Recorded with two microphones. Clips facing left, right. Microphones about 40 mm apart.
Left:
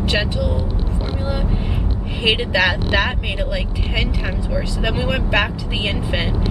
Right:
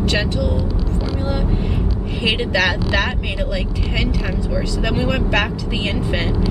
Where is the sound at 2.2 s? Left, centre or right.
Centre.